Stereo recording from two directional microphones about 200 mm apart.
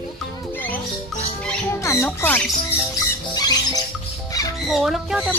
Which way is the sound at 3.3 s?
20° left (ahead or behind).